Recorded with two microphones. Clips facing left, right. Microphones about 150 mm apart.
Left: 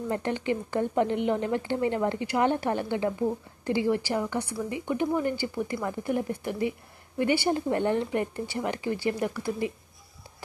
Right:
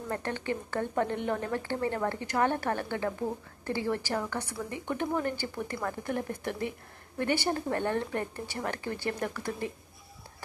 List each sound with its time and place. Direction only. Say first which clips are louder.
0.1 s a woman's voice: left 4 dB; 15° left (ahead or behind)